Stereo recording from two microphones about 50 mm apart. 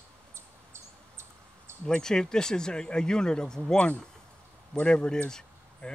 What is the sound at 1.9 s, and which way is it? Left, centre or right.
Speech, centre.